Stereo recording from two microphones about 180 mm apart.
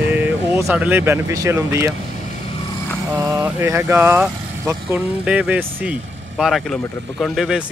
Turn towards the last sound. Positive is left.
turn(degrees=0)  # may be behind; listen again after turning